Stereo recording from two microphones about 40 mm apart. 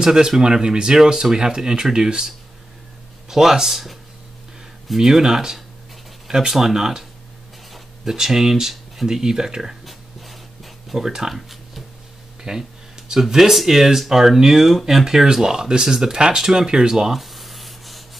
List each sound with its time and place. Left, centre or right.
0.0 s speech: centre
9.8 s writing: centre
11.0 s speech: centre
12.5 s speech: right
13.1 s speech: centre